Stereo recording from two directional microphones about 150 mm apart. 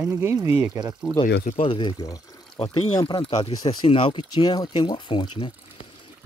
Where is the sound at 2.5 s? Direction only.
45° left (ahead or behind).